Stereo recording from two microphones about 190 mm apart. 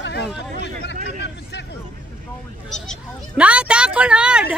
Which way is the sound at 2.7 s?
Centre (ahead or behind).